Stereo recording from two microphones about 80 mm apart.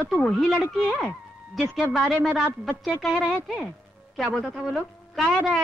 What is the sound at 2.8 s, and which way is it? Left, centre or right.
Speech, centre.